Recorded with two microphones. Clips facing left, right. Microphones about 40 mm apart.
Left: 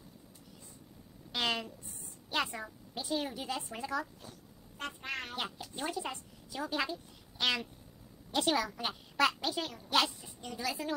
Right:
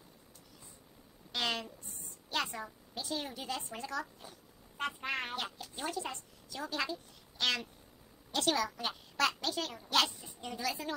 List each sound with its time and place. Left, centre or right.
1.3 s a woman's voice: centre
4.2 s vehicle: centre
5.3 s a woman's voice: centre
10.0 s a woman's voice: centre